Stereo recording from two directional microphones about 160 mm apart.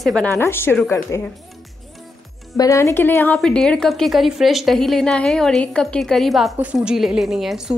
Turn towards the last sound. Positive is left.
turn(degrees=0)  # may be behind; listen again after turning